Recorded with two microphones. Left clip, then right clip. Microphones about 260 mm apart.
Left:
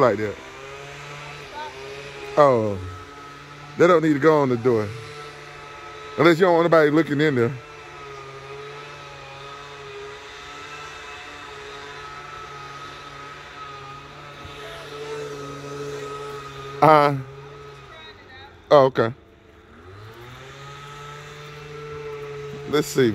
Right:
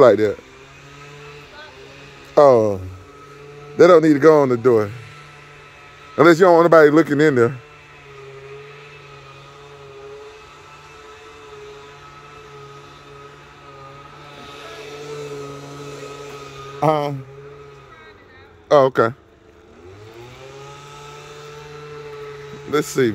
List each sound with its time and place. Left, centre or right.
0.0 s a man's voice: right
2.3 s a man's voice: centre
3.7 s speech: centre
6.1 s a man's voice: centre
15.1 s vehicle: right
16.8 s a man's voice: centre
18.7 s speech: centre
22.7 s speech: centre